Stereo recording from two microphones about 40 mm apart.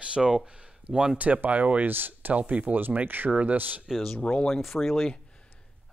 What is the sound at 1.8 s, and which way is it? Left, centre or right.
Speech, right.